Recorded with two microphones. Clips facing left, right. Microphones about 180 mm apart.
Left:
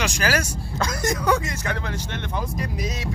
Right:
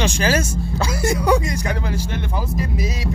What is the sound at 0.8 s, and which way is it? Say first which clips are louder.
A man's voice: right 3 dB; 10° right (ahead or behind).